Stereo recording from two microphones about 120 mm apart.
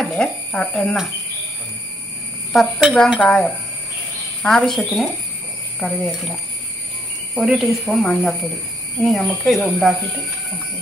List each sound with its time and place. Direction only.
0.0 s speech: 5° left (ahead or behind)
2.5 s speech: centre (ahead or behind)
7.3 s speech: 5° right (ahead or behind)